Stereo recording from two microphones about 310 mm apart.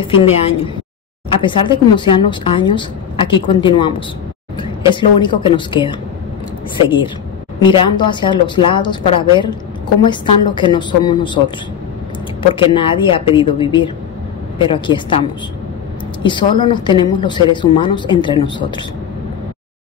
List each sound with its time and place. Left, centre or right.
0.1 s a woman's voice: centre
7.6 s a woman's voice: centre
12.5 s a woman's voice: centre